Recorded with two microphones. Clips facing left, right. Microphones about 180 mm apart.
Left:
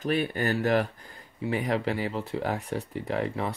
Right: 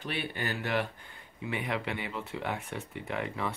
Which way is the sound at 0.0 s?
40° left (ahead or behind).